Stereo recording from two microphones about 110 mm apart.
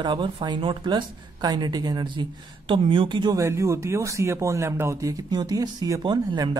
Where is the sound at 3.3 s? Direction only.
25° right (ahead or behind).